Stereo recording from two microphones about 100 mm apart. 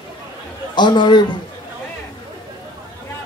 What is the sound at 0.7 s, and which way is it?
Speech, 50° left (ahead or behind).